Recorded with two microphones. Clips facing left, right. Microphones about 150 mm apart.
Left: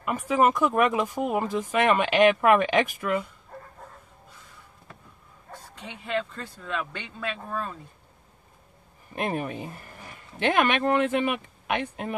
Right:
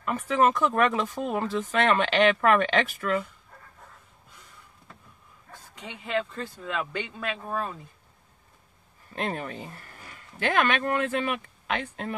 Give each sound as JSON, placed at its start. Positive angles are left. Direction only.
{"t": 0.0, "sound": "speech", "side_deg": 15}
{"t": 6.1, "sound": "speech", "side_deg": -5}
{"t": 9.1, "sound": "speech", "side_deg": 15}